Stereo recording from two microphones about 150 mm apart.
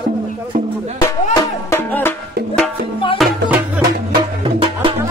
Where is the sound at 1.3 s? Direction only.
20° left (ahead or behind).